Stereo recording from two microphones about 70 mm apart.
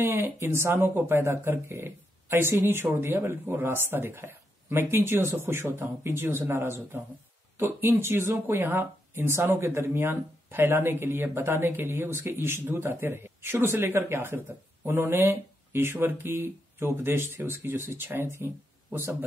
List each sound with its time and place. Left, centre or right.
0.0 s speech: right